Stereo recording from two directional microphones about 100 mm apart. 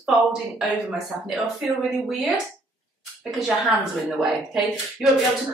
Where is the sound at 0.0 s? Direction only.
5° right (ahead or behind).